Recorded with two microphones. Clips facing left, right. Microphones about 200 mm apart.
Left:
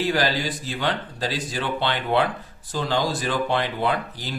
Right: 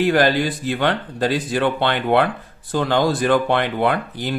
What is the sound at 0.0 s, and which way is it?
Speech, 55° right (ahead or behind).